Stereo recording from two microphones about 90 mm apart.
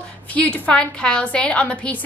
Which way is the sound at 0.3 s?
15° left (ahead or behind).